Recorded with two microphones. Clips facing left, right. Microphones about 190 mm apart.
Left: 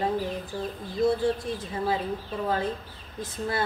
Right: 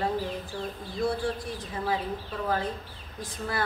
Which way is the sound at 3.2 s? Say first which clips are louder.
Left 3 dB; 25° left (ahead or behind).